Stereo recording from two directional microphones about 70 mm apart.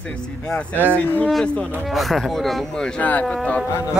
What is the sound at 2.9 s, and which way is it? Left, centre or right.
Speech, left.